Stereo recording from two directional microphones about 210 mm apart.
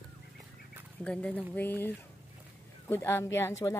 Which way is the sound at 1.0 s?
5° left (ahead or behind).